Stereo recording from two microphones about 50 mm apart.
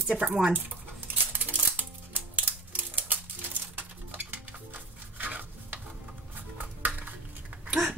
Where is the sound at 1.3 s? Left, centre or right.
Right.